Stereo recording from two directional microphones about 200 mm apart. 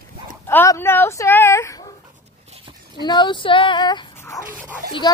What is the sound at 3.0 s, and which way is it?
Speech, 20° left (ahead or behind).